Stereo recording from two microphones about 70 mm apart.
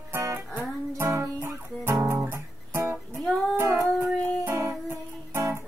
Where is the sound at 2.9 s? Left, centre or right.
Centre.